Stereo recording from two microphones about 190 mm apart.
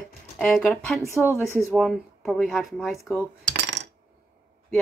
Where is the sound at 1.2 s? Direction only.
10° left (ahead or behind).